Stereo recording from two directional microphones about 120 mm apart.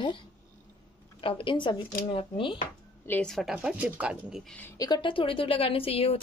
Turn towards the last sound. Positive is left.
turn(degrees=55)  # may be behind; listen again after turning